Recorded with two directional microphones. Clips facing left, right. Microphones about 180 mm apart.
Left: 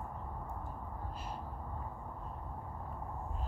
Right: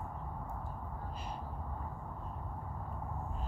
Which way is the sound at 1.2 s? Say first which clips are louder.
Even; 5° left (ahead or behind).